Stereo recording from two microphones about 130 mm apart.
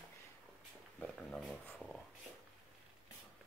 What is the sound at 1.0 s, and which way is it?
Speech, 5° left (ahead or behind).